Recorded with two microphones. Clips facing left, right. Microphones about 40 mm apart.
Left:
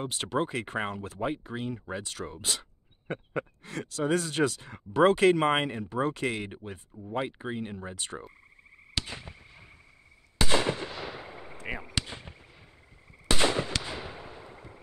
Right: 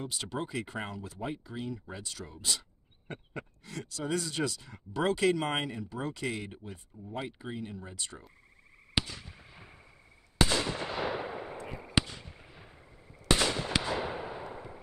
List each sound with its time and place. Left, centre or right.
0.0 s speech: left
9.0 s fireworks: left
10.5 s fireworks: left
10.9 s fireworks: right
13.4 s fireworks: left
13.8 s fireworks: right